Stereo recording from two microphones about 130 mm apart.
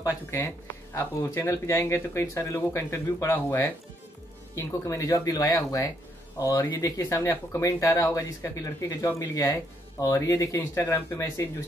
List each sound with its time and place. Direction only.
0.0 s speech: 20° left (ahead or behind)